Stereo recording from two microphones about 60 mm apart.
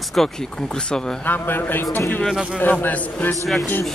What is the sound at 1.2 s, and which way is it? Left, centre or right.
A man's voice, left.